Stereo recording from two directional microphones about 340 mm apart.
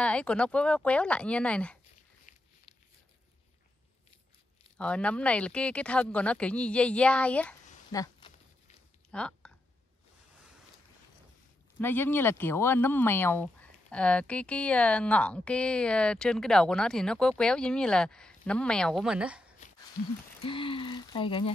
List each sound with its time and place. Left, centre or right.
0.0 s speech: centre
2.3 s a sound: left
4.7 s speech: centre
9.1 s a sound: centre
11.8 s speech: centre
20.4 s speech: centre